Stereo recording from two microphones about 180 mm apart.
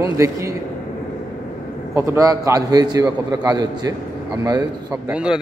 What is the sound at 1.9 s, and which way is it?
A man's voice, 15° right (ahead or behind).